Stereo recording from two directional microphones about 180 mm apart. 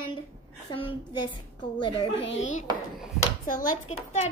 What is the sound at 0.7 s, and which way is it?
A child's voice, 25° left (ahead or behind).